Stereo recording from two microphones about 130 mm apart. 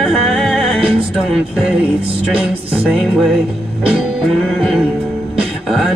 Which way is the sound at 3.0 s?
Centre (ahead or behind).